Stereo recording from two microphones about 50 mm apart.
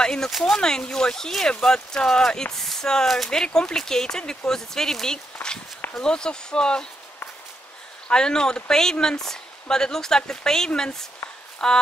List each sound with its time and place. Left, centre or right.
0.0 s a sound: centre
0.4 s speech: centre
8.1 s speech: centre